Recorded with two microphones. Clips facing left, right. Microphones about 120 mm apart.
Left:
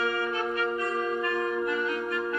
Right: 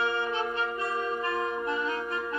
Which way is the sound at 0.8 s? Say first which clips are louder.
Left 2 dB; 25° right (ahead or behind).